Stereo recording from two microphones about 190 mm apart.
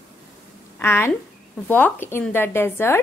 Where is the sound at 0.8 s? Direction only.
10° left (ahead or behind).